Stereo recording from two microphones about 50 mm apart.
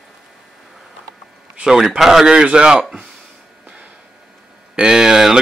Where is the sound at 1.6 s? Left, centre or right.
Centre.